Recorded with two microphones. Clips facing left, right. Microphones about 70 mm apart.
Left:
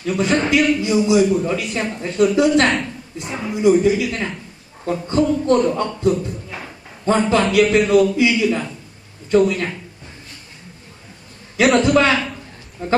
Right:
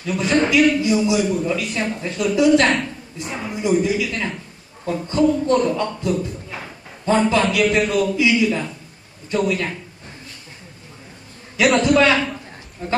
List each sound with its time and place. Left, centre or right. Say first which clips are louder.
0.0 s a man's voice: even; left
3.3 s speech: left 2 dB; centre
3.7 s a man's voice: left 3 dB; left
11.5 s a man's voice: left 1 dB; left